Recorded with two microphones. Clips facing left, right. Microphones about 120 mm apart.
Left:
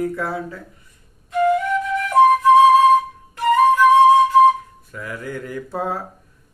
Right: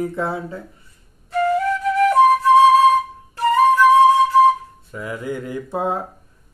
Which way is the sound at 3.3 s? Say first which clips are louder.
Even; 35° right (ahead or behind).